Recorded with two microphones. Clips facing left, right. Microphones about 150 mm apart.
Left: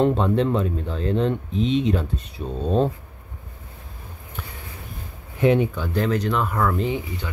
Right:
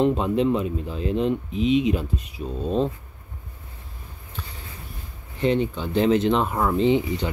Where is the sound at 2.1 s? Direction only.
35° left (ahead or behind).